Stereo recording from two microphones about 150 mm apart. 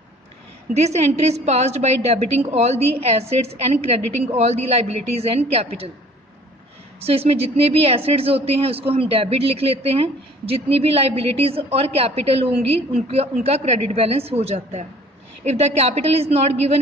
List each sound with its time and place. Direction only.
0.7 s a woman's voice: 45° right (ahead or behind)
7.0 s a woman's voice: 40° right (ahead or behind)